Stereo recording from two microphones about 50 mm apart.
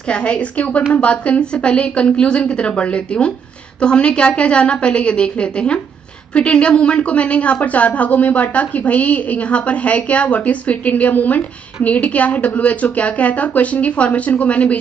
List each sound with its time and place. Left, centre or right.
0.1 s a woman's voice: left